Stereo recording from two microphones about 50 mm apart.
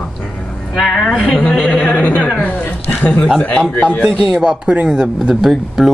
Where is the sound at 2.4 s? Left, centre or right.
Left.